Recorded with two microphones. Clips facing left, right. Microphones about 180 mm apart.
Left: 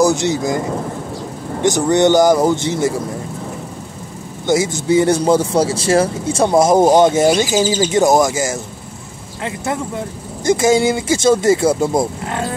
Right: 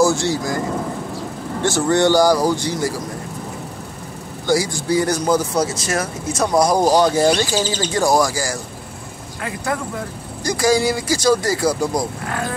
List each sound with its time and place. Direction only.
0.0 s speech: 20° left (ahead or behind)
1.6 s speech: 15° left (ahead or behind)
4.5 s speech: 20° left (ahead or behind)